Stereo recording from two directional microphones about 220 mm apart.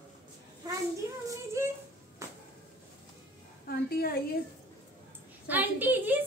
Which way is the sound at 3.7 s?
45° left (ahead or behind).